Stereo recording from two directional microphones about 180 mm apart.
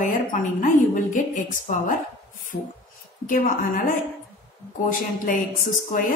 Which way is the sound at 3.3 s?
50° left (ahead or behind).